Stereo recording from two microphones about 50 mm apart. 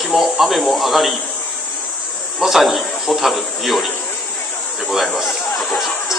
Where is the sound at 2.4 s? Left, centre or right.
Centre.